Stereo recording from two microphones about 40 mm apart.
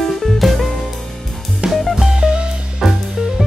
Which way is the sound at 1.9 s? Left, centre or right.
Centre.